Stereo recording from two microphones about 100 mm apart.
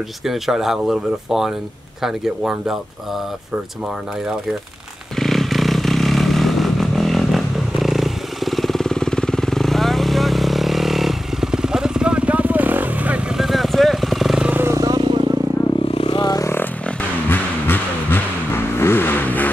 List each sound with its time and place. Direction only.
0.2 s speech: 5° right (ahead or behind)
5.2 s motorcycle: centre (ahead or behind); by 13.2 s 15° right (ahead or behind)
13.4 s vehicle: centre (ahead or behind)
14.5 s vehicle: 25° right (ahead or behind)
14.8 s vehicle: 45° right (ahead or behind)
15.9 s vehicle: 70° left (ahead or behind)
16.2 s vehicle: 40° left (ahead or behind)
17.3 s vehicle: 20° left (ahead or behind)